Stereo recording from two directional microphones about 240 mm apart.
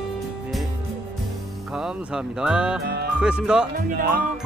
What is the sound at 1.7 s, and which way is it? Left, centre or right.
Speech, centre.